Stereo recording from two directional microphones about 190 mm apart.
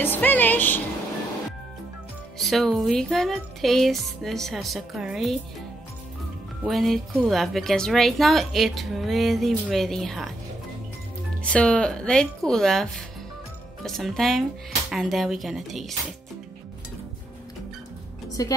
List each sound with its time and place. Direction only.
0.0 s speech: 10° left (ahead or behind)
2.3 s a woman's voice: centre (ahead or behind)
6.6 s a woman's voice: centre (ahead or behind)
11.4 s a woman's voice: 5° left (ahead or behind)
18.4 s speech: 20° left (ahead or behind)